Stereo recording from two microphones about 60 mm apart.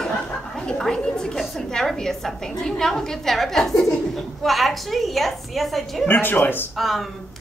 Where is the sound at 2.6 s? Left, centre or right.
Centre.